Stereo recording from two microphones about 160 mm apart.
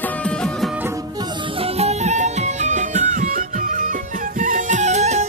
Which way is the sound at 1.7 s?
45° right (ahead or behind).